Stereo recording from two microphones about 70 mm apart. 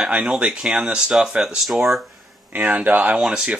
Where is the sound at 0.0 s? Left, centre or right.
Centre.